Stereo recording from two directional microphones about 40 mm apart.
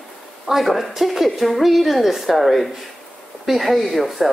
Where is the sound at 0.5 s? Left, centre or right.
Centre.